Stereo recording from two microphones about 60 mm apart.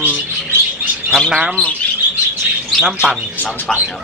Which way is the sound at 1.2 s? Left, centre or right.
Centre.